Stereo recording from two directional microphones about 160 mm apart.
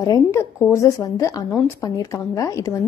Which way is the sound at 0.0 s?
20° left (ahead or behind).